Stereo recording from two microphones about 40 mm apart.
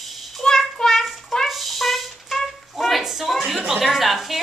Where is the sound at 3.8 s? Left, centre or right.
Centre.